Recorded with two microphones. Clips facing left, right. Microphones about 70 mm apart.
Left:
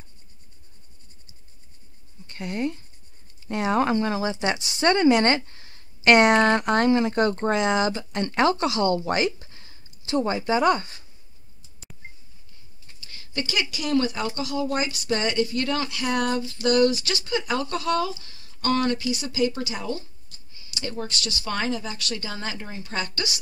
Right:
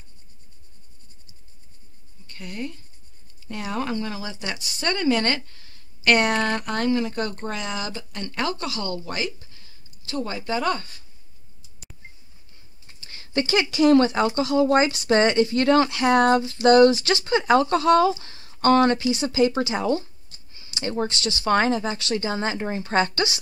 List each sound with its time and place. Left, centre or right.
2.2 s speech: left
10.0 s speech: left
13.0 s speech: right
13.9 s speech: right